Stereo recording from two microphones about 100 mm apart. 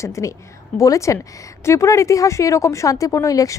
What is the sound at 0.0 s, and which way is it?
Speech, 30° left (ahead or behind).